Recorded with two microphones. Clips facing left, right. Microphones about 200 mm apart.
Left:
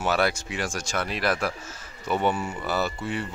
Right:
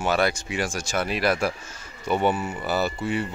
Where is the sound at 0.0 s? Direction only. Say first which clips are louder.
Right 1 dB; 5° left (ahead or behind).